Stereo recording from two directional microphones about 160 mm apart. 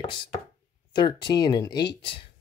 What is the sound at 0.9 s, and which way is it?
Speech, 30° left (ahead or behind).